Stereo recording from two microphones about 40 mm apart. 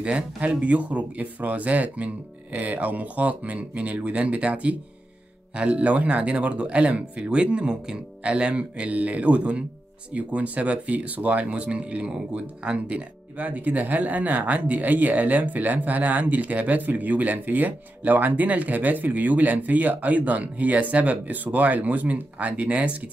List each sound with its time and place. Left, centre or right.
0.0 s speech: right